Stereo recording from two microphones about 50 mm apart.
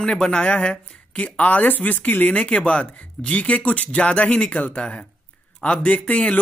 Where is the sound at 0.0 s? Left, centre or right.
Centre.